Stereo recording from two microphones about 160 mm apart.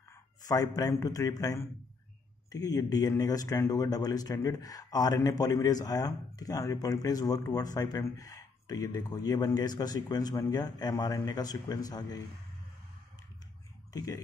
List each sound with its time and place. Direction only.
0.1 s a man's voice: 20° left (ahead or behind)
13.9 s speech: 20° left (ahead or behind)